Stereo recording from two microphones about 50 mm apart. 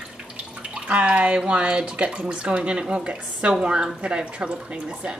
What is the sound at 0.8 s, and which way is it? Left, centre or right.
Speech, right.